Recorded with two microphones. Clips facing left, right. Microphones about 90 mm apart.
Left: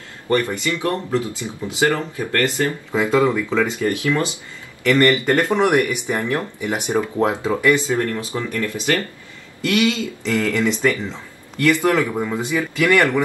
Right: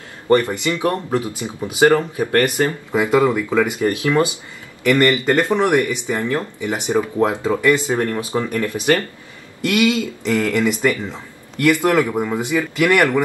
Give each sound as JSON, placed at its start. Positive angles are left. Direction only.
{"t": 0.3, "sound": "speech", "side_deg": -20}
{"t": 5.5, "sound": "speech", "side_deg": 15}
{"t": 7.6, "sound": "speech", "side_deg": -20}